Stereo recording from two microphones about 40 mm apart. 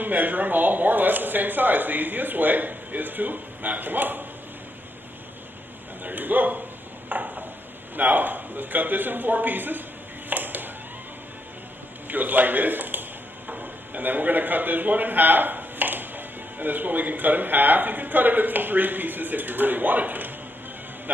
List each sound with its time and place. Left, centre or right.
0.0 s speech: right
6.0 s speech: right
7.1 s a sound: right
8.0 s speech: right
10.3 s a sound: right
12.1 s a man's voice: right